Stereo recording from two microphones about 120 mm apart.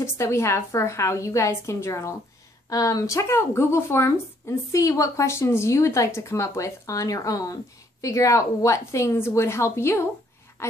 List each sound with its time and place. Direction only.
0.0 s a woman's voice: 25° left (ahead or behind)